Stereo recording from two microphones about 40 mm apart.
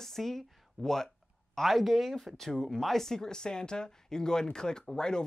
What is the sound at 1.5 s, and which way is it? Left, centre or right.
Speech, centre.